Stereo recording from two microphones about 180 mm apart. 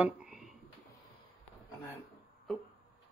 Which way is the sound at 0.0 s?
5° right (ahead or behind).